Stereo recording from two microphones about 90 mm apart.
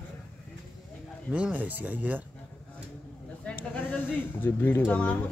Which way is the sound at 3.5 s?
20° left (ahead or behind).